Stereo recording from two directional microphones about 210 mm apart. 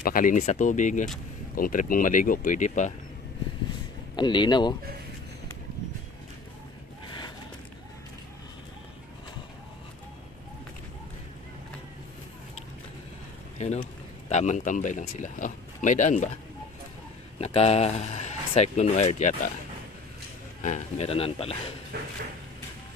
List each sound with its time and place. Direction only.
0.0 s speech: 40° left (ahead or behind)
4.2 s a man's voice: 20° left (ahead or behind)
13.6 s speech: 30° left (ahead or behind)
17.4 s speech: 30° left (ahead or behind)
20.6 s a man's voice: 35° left (ahead or behind)